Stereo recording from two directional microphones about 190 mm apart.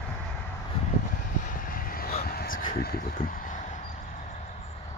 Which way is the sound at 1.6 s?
50° left (ahead or behind).